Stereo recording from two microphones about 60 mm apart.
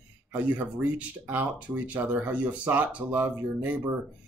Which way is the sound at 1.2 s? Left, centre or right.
Right.